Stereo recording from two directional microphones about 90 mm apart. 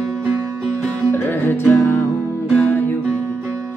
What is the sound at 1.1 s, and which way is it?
Music, 25° left (ahead or behind).